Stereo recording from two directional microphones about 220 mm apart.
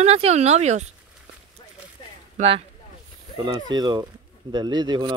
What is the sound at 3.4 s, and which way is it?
Speech, 20° right (ahead or behind).